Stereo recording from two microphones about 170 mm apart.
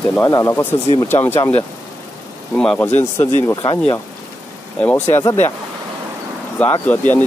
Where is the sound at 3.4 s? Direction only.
25° left (ahead or behind).